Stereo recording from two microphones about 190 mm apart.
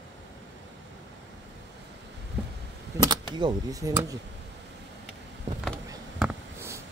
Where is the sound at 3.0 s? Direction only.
25° right (ahead or behind).